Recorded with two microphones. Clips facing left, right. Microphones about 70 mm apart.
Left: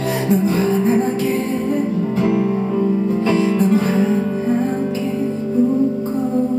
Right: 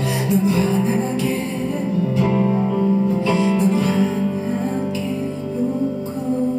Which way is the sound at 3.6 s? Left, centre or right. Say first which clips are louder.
Left 2 dB; left.